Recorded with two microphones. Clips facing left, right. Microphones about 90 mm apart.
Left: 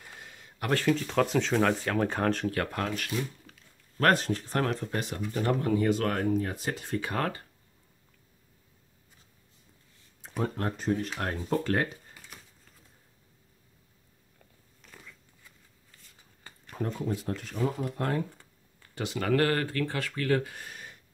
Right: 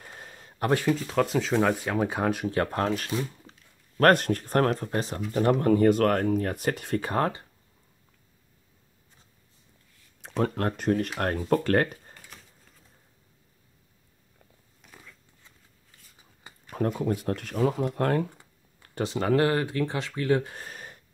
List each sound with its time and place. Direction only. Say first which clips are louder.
0.0 s a sound: right 3 dB; 40° right (ahead or behind)
0.7 s speech: left 1 dB; 5° right (ahead or behind)
2.5 s speech: right 5 dB; 30° right (ahead or behind)
4.0 s speech: right 5 dB; 55° right (ahead or behind)
4.8 s speech: right 3 dB; 35° right (ahead or behind)
5.6 s speech: right 7 dB; 50° right (ahead or behind)
7.0 s speech: right 4 dB; 30° right (ahead or behind)
10.2 s speech: right 5 dB; 75° right (ahead or behind); by 12.0 s 55° right (ahead or behind)
14.8 s a sound: even; 5° right (ahead or behind)
16.5 s a sound: right 1 dB; 15° right (ahead or behind)
17.0 s speech: right 4 dB; 55° right (ahead or behind)
18.9 s speech: right 3 dB; 30° right (ahead or behind)
20.4 s a sound: right 3 dB; 35° right (ahead or behind)